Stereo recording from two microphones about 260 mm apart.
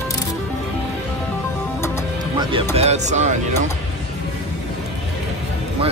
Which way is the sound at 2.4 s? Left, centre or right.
Centre.